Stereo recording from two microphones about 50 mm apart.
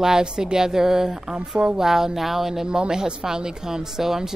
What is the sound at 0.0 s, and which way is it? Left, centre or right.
A woman's voice, centre.